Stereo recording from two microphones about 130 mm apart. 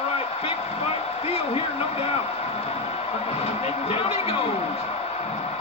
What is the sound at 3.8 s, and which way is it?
Speech, 50° left (ahead or behind).